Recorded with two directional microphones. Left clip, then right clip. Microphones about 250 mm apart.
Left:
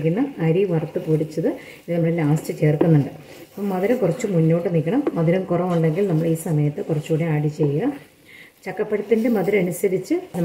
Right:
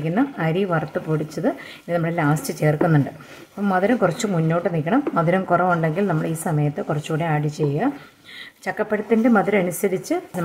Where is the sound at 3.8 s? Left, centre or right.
Right.